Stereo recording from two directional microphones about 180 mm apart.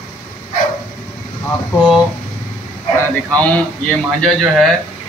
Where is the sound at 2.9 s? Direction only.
5° left (ahead or behind).